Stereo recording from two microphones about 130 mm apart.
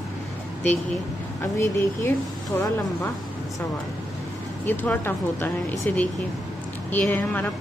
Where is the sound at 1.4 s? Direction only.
20° left (ahead or behind).